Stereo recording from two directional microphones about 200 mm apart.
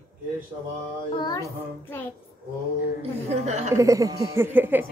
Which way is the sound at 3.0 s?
35° right (ahead or behind).